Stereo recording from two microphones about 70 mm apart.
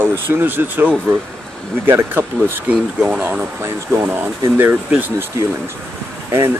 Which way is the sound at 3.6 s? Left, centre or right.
Right.